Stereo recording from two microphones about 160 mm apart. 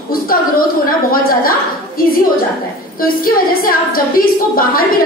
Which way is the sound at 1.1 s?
65° left (ahead or behind).